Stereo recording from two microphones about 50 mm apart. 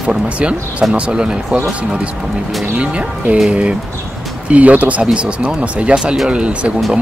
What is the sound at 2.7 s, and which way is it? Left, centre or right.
Speech, right.